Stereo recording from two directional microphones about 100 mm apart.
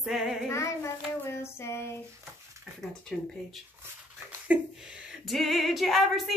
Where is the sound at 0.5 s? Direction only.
30° left (ahead or behind).